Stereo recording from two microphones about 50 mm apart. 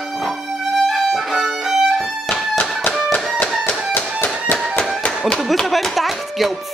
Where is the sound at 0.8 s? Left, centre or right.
Centre.